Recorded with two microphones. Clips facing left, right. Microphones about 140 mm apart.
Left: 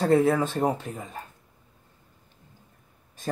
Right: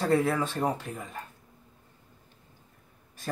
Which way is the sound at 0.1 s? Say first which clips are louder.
Left 5 dB; 20° left (ahead or behind).